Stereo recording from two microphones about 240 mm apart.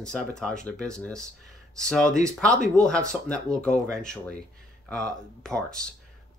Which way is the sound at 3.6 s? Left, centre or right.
Centre.